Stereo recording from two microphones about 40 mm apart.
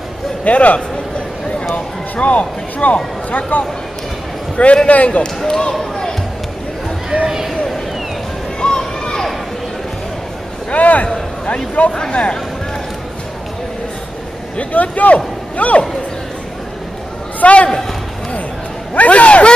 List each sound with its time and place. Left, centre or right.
0.5 s speech: left
2.1 s speech: left
4.8 s speech: left
5.2 s speech: centre
7.2 s speech: centre
8.5 s a sound: left
10.7 s a man's voice: left
14.6 s speech: left
17.4 s a man's voice: left
18.9 s speech: left